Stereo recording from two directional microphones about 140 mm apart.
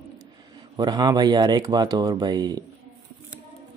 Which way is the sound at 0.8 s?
30° right (ahead or behind).